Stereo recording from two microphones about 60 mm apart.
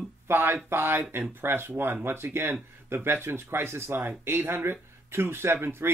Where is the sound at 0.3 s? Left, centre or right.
Right.